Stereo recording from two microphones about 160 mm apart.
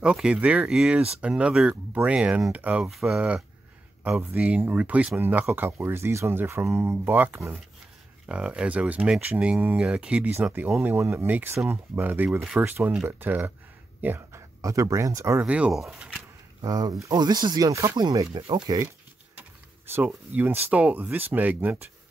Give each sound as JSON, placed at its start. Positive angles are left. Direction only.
{"t": 0.0, "sound": "speech", "side_deg": -5}
{"t": 8.3, "sound": "speech", "side_deg": -5}
{"t": 16.6, "sound": "speech", "side_deg": -25}
{"t": 20.3, "sound": "speech", "side_deg": -10}